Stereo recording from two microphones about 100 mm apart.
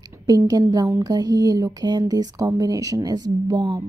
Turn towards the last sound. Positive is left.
turn(degrees=-45)  # may be behind; listen again after turning